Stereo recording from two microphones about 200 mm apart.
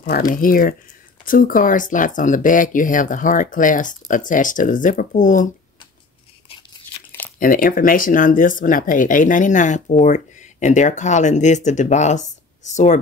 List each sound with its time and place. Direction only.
0.0 s speech: 45° left (ahead or behind)
7.1 s crumpling: 10° left (ahead or behind)
7.3 s speech: 45° left (ahead or behind)